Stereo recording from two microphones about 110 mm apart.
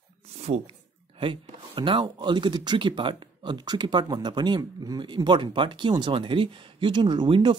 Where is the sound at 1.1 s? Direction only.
55° right (ahead or behind).